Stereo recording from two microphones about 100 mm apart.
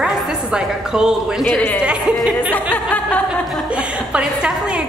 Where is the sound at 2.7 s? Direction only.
15° left (ahead or behind).